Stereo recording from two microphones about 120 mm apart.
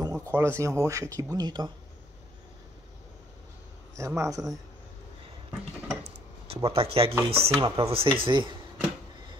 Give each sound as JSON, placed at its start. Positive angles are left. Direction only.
{"t": 0.0, "sound": "a sound", "side_deg": -30}
{"t": 0.3, "sound": "speech", "side_deg": -20}
{"t": 3.9, "sound": "speech", "side_deg": -25}
{"t": 6.5, "sound": "speech", "side_deg": -50}